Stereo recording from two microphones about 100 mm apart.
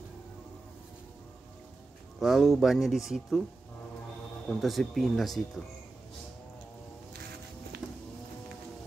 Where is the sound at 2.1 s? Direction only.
Centre (ahead or behind).